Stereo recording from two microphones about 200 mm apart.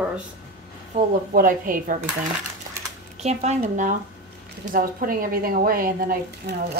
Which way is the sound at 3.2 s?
35° right (ahead or behind).